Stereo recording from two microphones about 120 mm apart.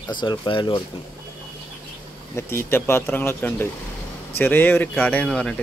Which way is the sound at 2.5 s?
20° left (ahead or behind).